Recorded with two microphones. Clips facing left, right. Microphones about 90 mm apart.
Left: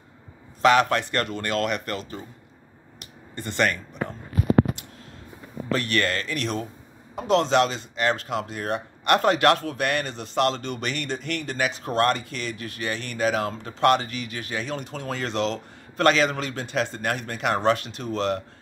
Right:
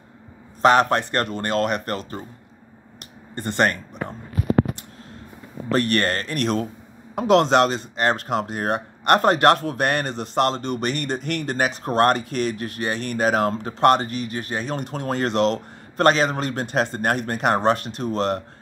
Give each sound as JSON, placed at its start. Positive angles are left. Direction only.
{"t": 0.6, "sound": "a man's voice", "side_deg": -40}
{"t": 3.3, "sound": "speech", "side_deg": -45}
{"t": 5.7, "sound": "speech", "side_deg": -45}
{"t": 7.2, "sound": "speech", "side_deg": -70}
{"t": 14.8, "sound": "speech", "side_deg": -55}
{"t": 16.0, "sound": "speech", "side_deg": -40}